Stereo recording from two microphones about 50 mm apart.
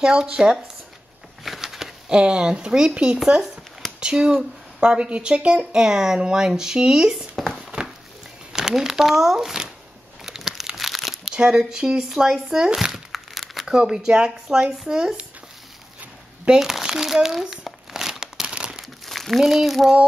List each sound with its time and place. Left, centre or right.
0.0 s speech: centre
1.4 s a sound: centre
2.0 s speech: centre
8.5 s speech: centre
10.2 s crumpling: centre
11.3 s speech: centre
13.7 s speech: centre
16.5 s crumpling: centre
19.0 s speech: centre